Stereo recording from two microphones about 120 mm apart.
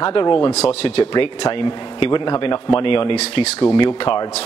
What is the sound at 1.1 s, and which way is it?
Speech, 40° left (ahead or behind).